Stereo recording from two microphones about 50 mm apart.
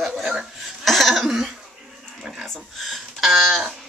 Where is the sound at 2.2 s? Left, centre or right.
Centre.